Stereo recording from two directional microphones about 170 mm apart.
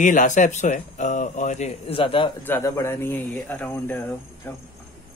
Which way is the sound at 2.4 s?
15° left (ahead or behind).